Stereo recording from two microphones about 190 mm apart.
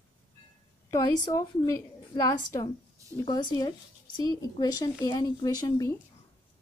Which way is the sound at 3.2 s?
20° left (ahead or behind).